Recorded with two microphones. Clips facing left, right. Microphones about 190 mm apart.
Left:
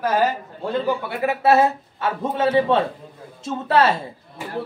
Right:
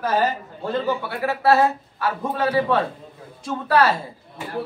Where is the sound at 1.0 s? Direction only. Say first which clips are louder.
Even; 20° left (ahead or behind).